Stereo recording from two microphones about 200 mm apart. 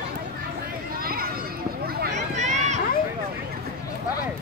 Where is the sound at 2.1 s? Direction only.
35° right (ahead or behind).